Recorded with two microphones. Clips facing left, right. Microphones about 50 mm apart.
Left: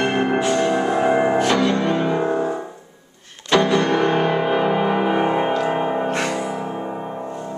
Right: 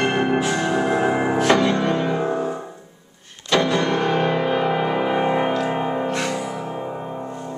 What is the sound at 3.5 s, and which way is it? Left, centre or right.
Music, centre.